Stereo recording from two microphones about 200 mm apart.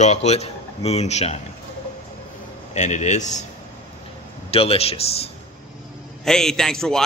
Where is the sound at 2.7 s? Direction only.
35° left (ahead or behind).